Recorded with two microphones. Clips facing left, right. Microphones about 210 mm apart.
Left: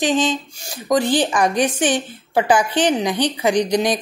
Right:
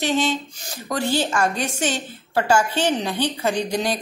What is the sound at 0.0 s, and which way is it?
Speech, 15° left (ahead or behind).